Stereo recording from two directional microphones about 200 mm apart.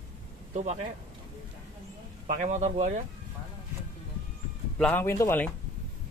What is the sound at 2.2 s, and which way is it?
Speech, 40° right (ahead or behind).